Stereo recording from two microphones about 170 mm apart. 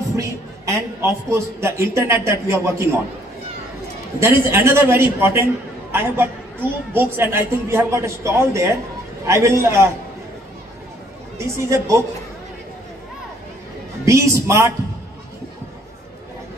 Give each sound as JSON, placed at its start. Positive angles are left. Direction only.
{"t": 0.1, "sound": "a man's voice", "side_deg": -15}
{"t": 4.2, "sound": "a man's voice", "side_deg": -15}
{"t": 11.3, "sound": "a man's voice", "side_deg": -15}
{"t": 14.0, "sound": "a man's voice", "side_deg": -15}